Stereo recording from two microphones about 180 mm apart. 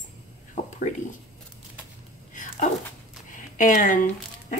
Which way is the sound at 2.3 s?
45° left (ahead or behind).